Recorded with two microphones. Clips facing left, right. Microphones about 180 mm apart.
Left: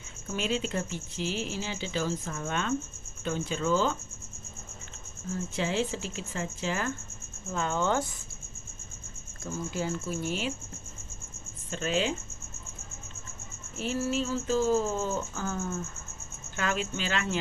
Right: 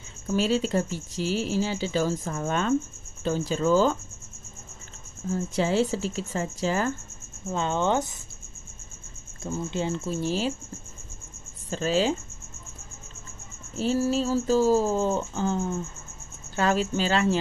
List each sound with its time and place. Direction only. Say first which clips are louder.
0.3 s speech: right 7 dB; 35° right (ahead or behind)
5.3 s speech: right 6 dB; 40° right (ahead or behind)
7.5 s speech: right 3 dB; 20° right (ahead or behind)
9.4 s speech: right 4 dB; 25° right (ahead or behind)
11.7 s speech: right 5 dB; 35° right (ahead or behind)
13.7 s speech: right 6 dB; 35° right (ahead or behind)
16.5 s speech: right 7 dB; 35° right (ahead or behind)